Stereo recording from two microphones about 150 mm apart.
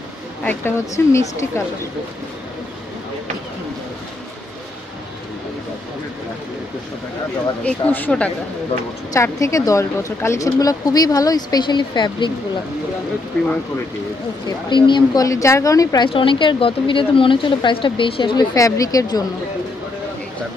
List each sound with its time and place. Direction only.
0.4 s speech: 15° left (ahead or behind)
7.6 s speech: 10° left (ahead or behind)
9.1 s speech: 20° left (ahead or behind)
14.7 s speech: 30° left (ahead or behind)
16.1 s a woman's voice: 35° left (ahead or behind)